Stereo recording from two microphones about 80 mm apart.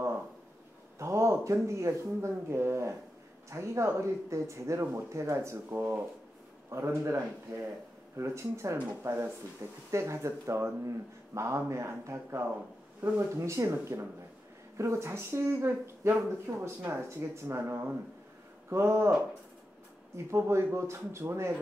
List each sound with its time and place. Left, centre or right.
0.9 s speech: right
6.7 s speech: right
20.2 s speech: right